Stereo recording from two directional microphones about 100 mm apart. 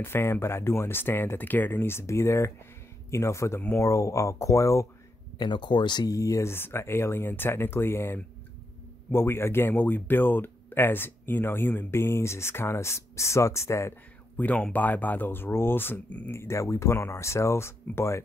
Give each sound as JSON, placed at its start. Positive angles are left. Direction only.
{"t": 0.0, "sound": "speech", "side_deg": 25}
{"t": 5.4, "sound": "speech", "side_deg": 50}
{"t": 14.3, "sound": "speech", "side_deg": 15}